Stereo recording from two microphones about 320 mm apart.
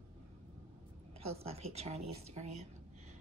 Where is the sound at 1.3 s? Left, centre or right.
Centre.